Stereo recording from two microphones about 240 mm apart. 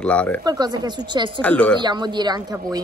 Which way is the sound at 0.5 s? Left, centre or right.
Centre.